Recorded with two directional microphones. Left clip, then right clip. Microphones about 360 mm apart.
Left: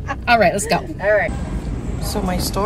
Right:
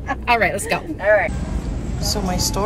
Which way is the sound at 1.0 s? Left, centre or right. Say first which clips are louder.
Right 2 dB; right.